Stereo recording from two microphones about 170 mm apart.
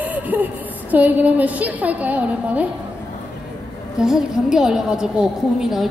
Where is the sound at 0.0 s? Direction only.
10° right (ahead or behind).